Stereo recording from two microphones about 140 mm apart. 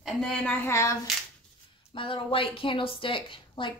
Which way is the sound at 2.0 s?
40° left (ahead or behind).